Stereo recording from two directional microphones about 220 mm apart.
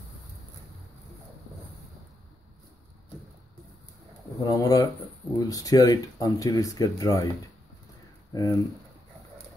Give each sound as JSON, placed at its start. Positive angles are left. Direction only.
{"t": 4.4, "sound": "speech", "side_deg": 15}
{"t": 8.3, "sound": "speech", "side_deg": 15}